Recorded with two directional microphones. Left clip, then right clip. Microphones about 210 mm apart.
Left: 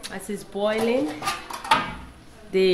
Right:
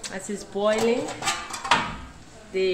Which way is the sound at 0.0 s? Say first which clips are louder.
Even; 15° left (ahead or behind).